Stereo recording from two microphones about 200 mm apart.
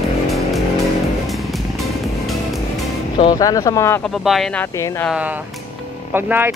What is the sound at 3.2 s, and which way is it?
Speech, 20° left (ahead or behind).